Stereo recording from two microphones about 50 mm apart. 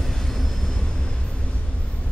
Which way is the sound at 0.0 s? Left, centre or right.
Centre.